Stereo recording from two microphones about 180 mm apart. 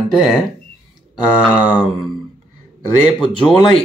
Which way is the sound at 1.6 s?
5° right (ahead or behind).